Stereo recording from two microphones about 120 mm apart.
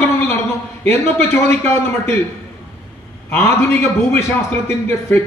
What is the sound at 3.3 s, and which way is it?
A man's voice, 20° left (ahead or behind).